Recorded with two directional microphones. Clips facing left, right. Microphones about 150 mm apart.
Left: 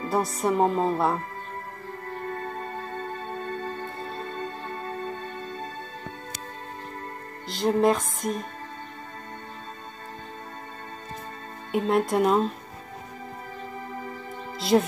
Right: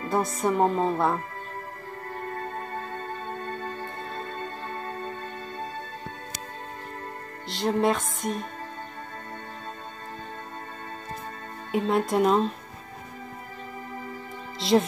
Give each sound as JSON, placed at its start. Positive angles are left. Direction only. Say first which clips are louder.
{"t": 0.1, "sound": "speech", "louder": "even", "side_deg": 0}
{"t": 7.4, "sound": "speech", "louder": "left 2 dB", "side_deg": 0}
{"t": 11.7, "sound": "speech", "louder": "left 1 dB", "side_deg": 0}
{"t": 14.6, "sound": "speech", "louder": "even", "side_deg": 0}